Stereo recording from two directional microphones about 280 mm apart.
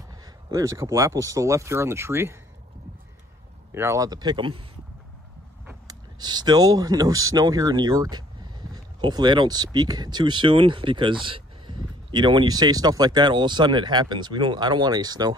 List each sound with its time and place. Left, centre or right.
0.5 s speech: centre
3.7 s speech: centre
5.7 s speech: centre